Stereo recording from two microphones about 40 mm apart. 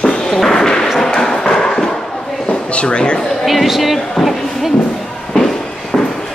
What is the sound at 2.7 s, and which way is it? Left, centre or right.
Speech, left.